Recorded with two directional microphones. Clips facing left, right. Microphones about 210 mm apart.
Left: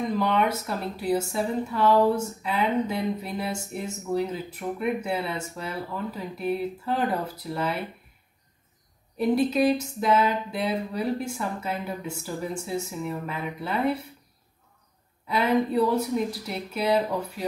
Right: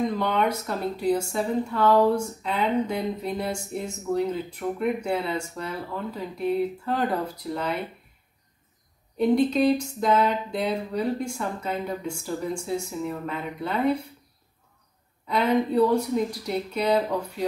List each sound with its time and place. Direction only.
0.2 s speech: 5° left (ahead or behind)
9.4 s speech: 5° left (ahead or behind)
15.2 s speech: 5° left (ahead or behind)